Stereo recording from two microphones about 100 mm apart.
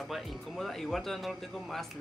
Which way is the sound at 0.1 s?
Centre (ahead or behind).